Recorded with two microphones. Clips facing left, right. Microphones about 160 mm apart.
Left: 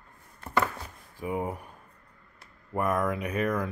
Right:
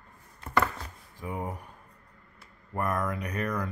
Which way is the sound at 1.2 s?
10° left (ahead or behind).